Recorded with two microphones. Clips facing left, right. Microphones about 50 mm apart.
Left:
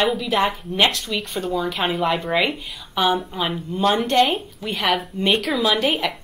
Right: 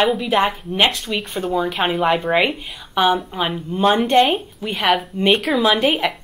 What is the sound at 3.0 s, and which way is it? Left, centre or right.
Speech, centre.